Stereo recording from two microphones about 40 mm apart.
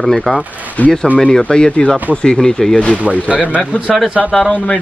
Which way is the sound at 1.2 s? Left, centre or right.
Centre.